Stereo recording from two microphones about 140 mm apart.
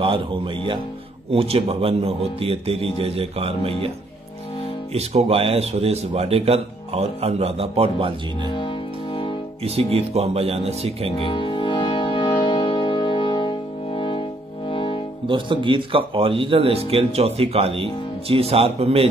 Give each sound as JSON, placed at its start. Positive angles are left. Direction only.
{"t": 0.0, "sound": "speech", "side_deg": -40}
{"t": 4.9, "sound": "speech", "side_deg": -45}
{"t": 9.8, "sound": "speech", "side_deg": -45}
{"t": 11.1, "sound": "music", "side_deg": 40}
{"t": 15.2, "sound": "speech", "side_deg": -35}